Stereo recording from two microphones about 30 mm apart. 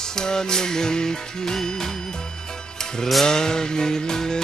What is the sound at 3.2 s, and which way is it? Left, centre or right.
Music, left.